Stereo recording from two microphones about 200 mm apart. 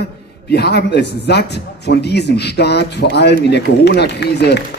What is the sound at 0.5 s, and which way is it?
A man's voice, 55° left (ahead or behind).